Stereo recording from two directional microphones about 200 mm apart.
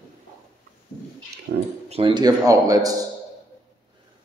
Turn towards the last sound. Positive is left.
turn(degrees=-20)  # may be behind; listen again after turning